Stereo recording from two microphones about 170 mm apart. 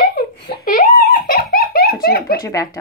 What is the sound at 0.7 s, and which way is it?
Giggle, 50° left (ahead or behind).